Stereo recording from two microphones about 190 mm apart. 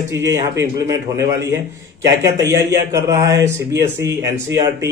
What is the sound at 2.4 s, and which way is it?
A man's voice, 15° right (ahead or behind).